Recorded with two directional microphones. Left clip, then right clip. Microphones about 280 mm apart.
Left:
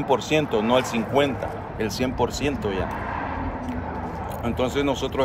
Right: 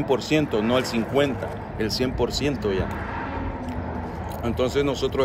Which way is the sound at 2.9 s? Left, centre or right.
Centre.